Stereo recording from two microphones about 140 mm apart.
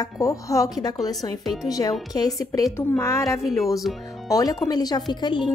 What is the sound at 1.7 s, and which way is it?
A woman's voice, 25° left (ahead or behind).